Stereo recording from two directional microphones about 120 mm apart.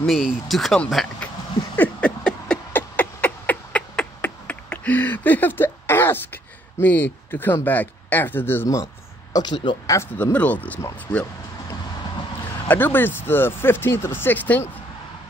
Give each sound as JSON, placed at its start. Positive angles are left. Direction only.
{"t": 0.0, "sound": "speech", "side_deg": 0}
{"t": 1.8, "sound": "a sound", "side_deg": 10}
{"t": 9.3, "sound": "speech", "side_deg": 35}
{"t": 9.8, "sound": "speech", "side_deg": 20}
{"t": 12.6, "sound": "speech", "side_deg": 15}